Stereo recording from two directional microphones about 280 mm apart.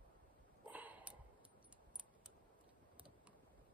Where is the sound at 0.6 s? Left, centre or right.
Centre.